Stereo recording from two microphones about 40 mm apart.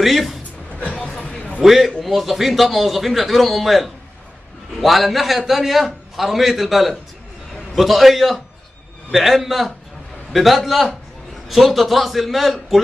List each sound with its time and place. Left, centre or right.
0.0 s speech: centre
0.7 s vehicle: left
1.2 s a sound: left
1.6 s a man's voice: centre